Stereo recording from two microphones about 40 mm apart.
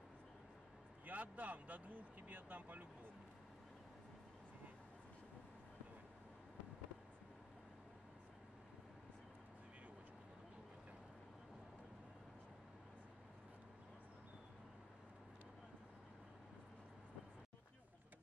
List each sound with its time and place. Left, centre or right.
1.0 s speech: right